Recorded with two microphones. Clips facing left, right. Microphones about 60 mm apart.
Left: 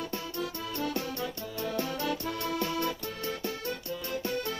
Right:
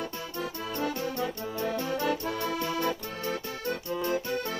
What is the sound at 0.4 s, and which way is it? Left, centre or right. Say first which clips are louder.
Music: right 3 dB; centre.